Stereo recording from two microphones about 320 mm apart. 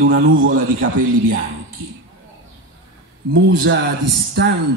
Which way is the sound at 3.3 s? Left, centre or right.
Right.